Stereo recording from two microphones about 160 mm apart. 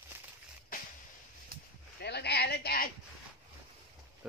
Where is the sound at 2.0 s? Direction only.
90° left.